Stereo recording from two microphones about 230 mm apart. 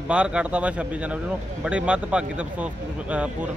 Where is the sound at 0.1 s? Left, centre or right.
Centre.